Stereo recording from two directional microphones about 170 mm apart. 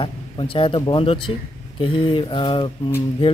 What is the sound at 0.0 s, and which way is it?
Speech, 30° left (ahead or behind).